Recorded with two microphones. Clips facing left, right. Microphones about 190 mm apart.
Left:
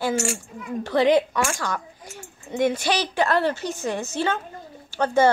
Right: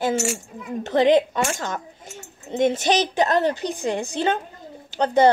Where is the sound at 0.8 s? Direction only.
20° right (ahead or behind).